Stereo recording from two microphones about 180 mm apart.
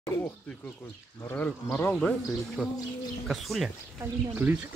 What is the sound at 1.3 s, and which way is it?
Speech, 10° left (ahead or behind).